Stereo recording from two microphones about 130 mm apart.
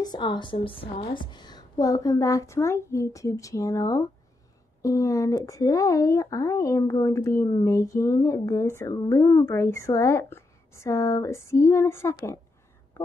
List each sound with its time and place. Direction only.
0.0 s speech: 35° left (ahead or behind)